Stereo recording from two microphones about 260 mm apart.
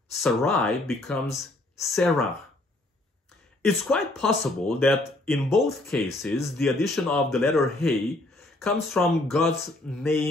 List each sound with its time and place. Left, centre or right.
0.2 s a man's voice: centre
3.6 s a man's voice: centre
6.0 s speech: centre
6.4 s a man's voice: centre